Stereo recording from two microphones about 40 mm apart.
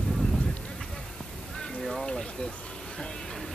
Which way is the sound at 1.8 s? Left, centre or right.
Centre.